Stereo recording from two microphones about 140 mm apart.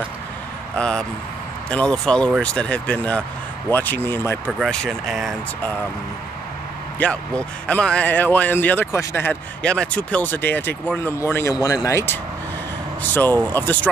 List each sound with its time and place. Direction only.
0.7 s a man's voice: 5° left (ahead or behind)
4.6 s speech: centre (ahead or behind)
7.0 s a man's voice: 10° left (ahead or behind)